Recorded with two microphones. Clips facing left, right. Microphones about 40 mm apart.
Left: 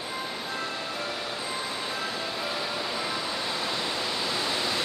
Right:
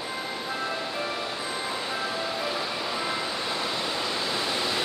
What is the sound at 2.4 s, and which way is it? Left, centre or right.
Music, centre.